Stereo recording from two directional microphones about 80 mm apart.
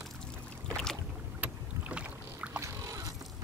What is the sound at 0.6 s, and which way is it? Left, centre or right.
Boat, centre.